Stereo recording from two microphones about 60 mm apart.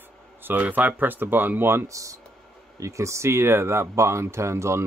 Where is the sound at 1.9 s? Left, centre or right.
Right.